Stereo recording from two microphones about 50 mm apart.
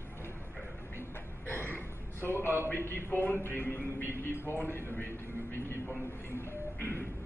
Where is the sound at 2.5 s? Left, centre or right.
Left.